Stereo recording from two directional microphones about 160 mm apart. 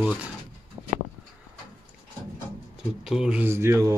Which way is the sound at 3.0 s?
5° right (ahead or behind).